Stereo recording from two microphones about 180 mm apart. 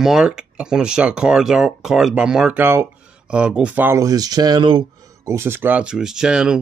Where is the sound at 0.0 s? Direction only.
5° right (ahead or behind).